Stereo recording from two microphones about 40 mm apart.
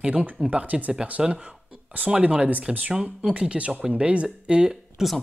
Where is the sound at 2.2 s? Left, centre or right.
Right.